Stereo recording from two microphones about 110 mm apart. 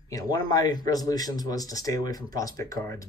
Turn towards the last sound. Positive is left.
turn(degrees=30)  # may be behind; listen again after turning